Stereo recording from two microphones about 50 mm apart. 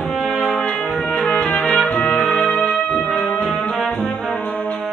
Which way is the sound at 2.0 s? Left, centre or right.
Centre.